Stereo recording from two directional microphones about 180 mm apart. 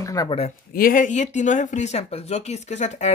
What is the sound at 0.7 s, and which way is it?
Speech, 50° left (ahead or behind).